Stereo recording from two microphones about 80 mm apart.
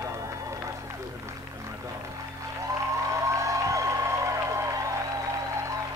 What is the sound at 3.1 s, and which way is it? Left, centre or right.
Music, right.